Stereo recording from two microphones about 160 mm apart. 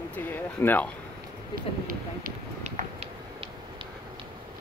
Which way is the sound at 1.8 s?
55° right (ahead or behind).